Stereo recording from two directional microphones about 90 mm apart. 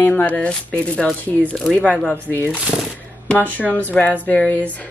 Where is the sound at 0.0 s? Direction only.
20° left (ahead or behind).